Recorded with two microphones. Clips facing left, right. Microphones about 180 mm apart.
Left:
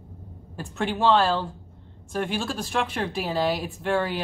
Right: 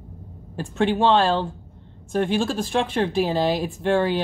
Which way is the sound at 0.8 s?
25° right (ahead or behind).